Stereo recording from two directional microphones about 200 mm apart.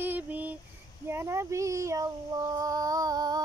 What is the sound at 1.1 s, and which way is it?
Female singing, 15° right (ahead or behind).